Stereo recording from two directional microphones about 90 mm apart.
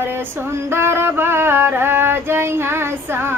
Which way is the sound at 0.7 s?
25° right (ahead or behind).